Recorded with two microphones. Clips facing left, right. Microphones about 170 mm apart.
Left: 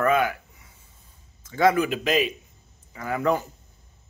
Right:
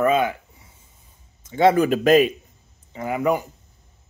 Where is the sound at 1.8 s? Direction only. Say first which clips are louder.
Right 7 dB; 45° right (ahead or behind).